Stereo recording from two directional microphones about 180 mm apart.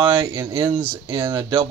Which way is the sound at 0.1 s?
25° right (ahead or behind).